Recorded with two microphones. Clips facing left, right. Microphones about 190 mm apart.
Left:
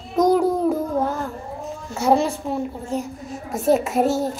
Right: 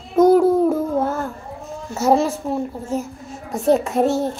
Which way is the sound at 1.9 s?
5° right (ahead or behind).